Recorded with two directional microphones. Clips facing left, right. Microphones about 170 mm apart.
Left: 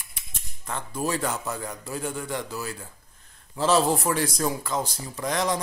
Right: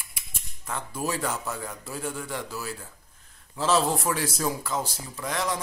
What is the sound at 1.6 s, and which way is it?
Speech, 5° right (ahead or behind).